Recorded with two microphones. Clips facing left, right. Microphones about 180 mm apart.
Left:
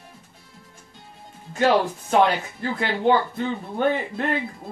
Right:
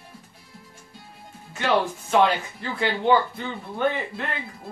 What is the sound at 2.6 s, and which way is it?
Speech, 45° left (ahead or behind).